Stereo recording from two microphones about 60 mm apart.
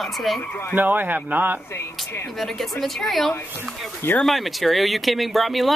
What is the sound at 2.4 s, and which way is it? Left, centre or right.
Speech, centre.